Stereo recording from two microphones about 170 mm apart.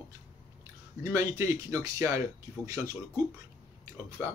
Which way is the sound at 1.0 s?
20° right (ahead or behind).